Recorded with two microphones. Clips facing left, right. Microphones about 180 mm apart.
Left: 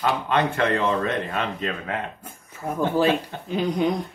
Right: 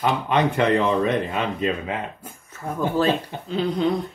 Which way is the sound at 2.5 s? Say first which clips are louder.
Left 1 dB; 10° left (ahead or behind).